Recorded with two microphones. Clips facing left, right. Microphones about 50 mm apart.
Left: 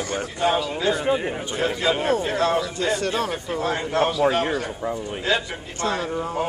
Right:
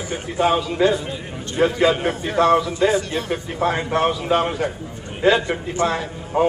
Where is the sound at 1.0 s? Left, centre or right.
Left.